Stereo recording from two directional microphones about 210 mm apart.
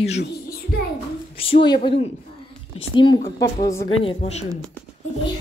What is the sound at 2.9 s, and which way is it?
Speech, 20° left (ahead or behind).